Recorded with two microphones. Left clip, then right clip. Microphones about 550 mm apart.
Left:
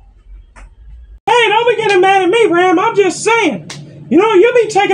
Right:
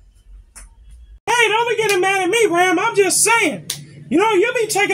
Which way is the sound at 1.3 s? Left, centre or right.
Right.